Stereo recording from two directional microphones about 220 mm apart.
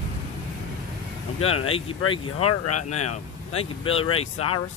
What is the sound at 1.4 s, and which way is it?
Speech, 75° left (ahead or behind).